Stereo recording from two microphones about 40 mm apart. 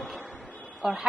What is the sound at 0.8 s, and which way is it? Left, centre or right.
Speech, centre.